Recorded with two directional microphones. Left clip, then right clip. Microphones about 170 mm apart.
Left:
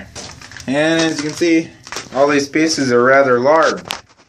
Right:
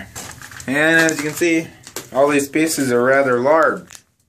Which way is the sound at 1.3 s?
Centre (ahead or behind).